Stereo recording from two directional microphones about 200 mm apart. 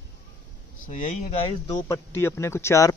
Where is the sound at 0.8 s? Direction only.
40° left (ahead or behind).